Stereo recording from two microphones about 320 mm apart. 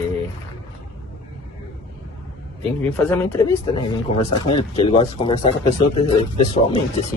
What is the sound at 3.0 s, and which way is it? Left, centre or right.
Speech, centre.